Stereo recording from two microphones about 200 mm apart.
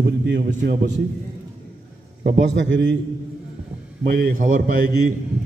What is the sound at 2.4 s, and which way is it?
Speech, 65° right (ahead or behind).